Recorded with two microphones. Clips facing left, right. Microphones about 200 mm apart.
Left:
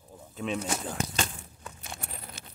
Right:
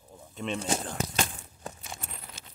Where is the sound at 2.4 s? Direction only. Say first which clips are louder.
Left 3 dB; 60° left (ahead or behind).